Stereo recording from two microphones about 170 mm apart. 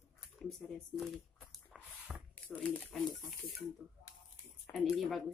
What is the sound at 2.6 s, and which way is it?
Speech, 5° left (ahead or behind).